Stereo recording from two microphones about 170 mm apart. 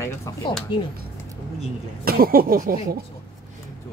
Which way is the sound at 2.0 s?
60° right (ahead or behind).